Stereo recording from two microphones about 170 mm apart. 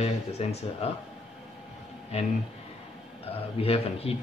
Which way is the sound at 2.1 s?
40° left (ahead or behind).